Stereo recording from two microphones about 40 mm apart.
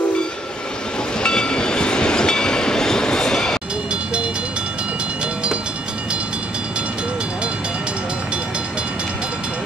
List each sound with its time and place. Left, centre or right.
1.2 s train: left